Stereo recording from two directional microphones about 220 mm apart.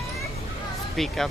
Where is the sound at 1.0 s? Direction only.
Centre (ahead or behind).